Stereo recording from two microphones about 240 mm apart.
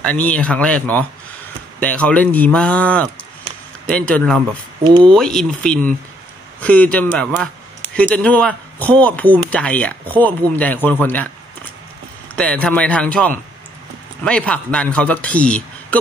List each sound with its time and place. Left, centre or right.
0.0 s a man's voice: centre
4.8 s speech: centre
5.1 s a man's voice: centre
12.4 s a man's voice: centre